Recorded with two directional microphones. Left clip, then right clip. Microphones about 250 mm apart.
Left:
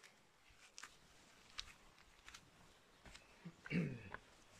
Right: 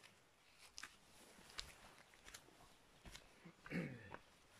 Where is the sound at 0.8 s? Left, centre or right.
Centre.